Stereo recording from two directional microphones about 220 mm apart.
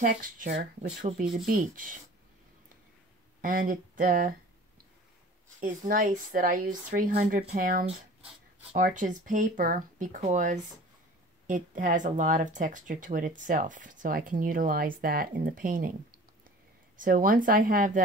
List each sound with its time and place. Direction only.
0.0 s speech: 35° right (ahead or behind)
3.3 s speech: 35° right (ahead or behind)
5.6 s speech: 35° right (ahead or behind)